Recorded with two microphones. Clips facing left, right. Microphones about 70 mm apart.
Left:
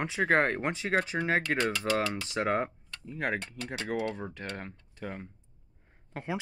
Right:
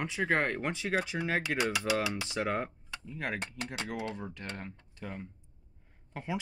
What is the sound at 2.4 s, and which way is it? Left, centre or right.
Speech, left.